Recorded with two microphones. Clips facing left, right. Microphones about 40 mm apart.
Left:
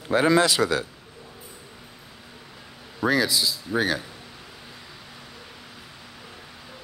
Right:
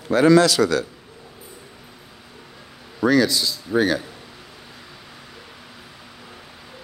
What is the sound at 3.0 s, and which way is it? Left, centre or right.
Speech, centre.